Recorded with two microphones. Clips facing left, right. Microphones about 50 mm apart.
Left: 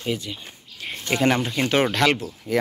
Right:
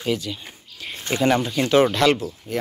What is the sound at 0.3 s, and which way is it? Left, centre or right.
Speech, centre.